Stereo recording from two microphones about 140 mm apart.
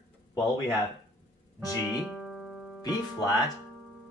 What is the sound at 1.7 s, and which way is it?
Music, 5° right (ahead or behind).